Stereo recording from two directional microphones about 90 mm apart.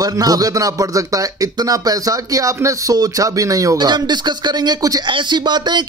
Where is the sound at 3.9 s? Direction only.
55° right (ahead or behind).